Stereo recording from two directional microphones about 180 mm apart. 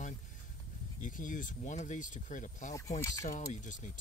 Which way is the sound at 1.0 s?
45° left (ahead or behind).